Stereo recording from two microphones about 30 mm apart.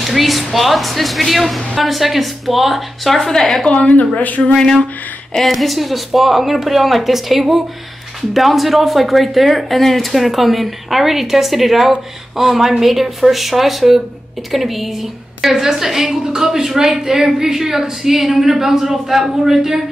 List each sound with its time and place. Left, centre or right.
0.0 s speech: centre
4.6 s a sound: centre
5.3 s a woman's voice: centre